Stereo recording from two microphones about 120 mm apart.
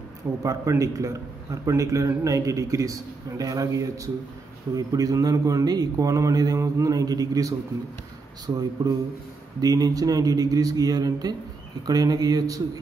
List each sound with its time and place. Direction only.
0.4 s a man's voice: 25° right (ahead or behind)